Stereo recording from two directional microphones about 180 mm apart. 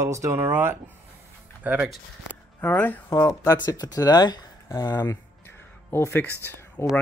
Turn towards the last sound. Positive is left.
turn(degrees=10)  # may be behind; listen again after turning